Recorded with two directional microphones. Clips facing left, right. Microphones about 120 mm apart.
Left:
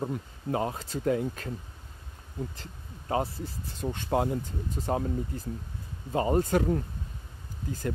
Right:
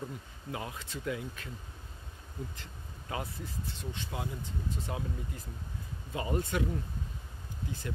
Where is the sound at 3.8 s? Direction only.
50° left (ahead or behind).